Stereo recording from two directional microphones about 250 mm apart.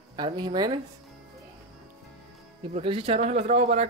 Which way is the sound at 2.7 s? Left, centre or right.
Right.